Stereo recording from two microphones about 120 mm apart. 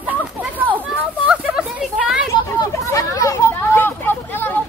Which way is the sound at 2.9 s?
30° left (ahead or behind).